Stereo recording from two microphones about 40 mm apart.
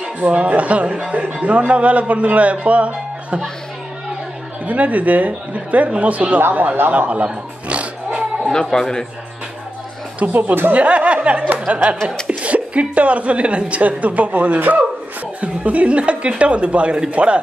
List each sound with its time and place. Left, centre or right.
0.2 s a woman's voice: right
4.6 s a woman's voice: right
6.9 s a sound: right
8.7 s a man's voice: centre
10.2 s speech: right
10.7 s a woman's voice: right